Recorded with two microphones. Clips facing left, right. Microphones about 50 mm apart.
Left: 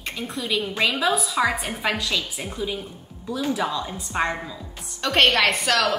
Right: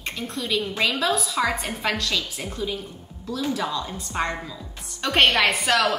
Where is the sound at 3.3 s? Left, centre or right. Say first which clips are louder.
Left 2 dB; left.